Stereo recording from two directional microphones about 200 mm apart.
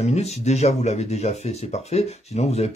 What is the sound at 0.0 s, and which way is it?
Speech, 35° left (ahead or behind).